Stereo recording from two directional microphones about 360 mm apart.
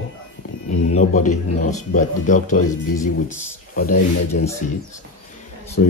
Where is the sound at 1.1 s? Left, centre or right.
Left.